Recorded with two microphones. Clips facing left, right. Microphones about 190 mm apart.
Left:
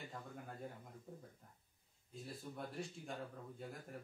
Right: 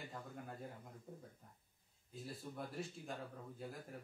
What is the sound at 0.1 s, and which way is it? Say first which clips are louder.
Speech: right 1 dB; centre (ahead or behind).